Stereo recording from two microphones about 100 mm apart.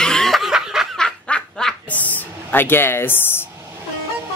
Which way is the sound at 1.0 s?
10° left (ahead or behind).